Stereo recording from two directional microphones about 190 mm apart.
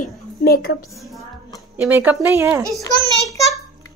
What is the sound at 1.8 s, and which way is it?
Speech, 10° right (ahead or behind).